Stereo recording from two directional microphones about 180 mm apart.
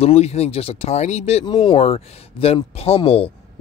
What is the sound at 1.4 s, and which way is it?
Speech, 25° left (ahead or behind).